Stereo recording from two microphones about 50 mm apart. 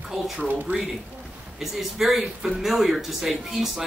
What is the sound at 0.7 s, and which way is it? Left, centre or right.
Speech, right.